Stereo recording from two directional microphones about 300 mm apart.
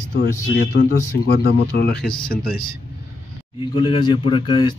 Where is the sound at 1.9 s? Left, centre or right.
Centre.